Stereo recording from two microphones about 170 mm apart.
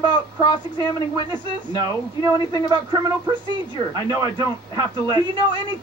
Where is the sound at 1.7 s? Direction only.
25° right (ahead or behind).